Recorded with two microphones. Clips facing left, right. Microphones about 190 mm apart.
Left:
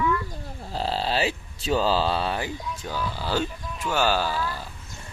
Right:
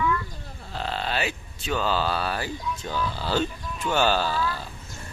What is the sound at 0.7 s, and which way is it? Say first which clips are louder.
Speech: left 3 dB; 35° left (ahead or behind).